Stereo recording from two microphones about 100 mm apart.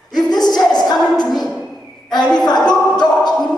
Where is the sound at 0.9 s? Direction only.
5° left (ahead or behind).